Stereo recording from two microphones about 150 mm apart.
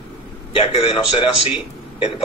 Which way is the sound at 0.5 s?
35° left (ahead or behind).